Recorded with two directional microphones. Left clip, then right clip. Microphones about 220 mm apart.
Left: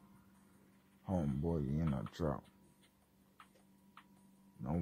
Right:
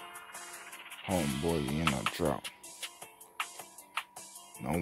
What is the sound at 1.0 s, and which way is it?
Speech, 40° right (ahead or behind).